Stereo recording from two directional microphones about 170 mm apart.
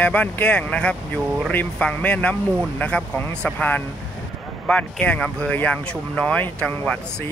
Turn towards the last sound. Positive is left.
turn(degrees=5)  # may be behind; listen again after turning